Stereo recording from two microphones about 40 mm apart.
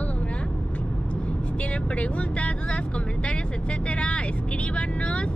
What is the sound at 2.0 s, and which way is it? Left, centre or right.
Speech, left.